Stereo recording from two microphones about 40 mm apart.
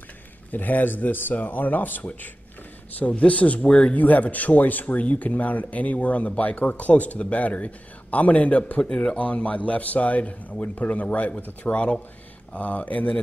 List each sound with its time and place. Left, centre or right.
0.5 s speech: left
3.1 s speech: left
3.6 s speech: left
3.9 s speech: left
8.8 s speech: left
9.2 s speech: left
12.5 s speech: left